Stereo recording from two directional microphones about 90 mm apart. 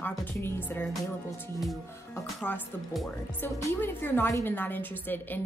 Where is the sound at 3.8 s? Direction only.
25° left (ahead or behind).